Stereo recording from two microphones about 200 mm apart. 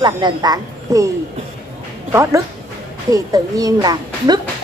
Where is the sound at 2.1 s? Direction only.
15° right (ahead or behind).